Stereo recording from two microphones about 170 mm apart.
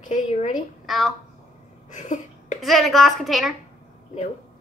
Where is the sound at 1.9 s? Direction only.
50° left (ahead or behind).